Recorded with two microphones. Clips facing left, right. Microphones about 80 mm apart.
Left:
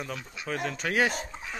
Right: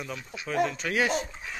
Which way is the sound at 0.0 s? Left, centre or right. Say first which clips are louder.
Even; left.